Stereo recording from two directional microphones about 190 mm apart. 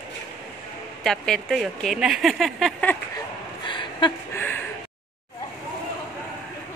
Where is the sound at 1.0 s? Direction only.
Centre (ahead or behind).